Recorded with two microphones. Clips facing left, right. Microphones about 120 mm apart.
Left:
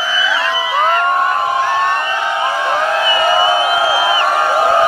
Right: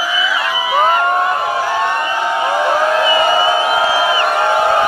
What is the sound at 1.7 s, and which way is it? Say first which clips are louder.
Crowd: left 1 dB; 15° right (ahead or behind).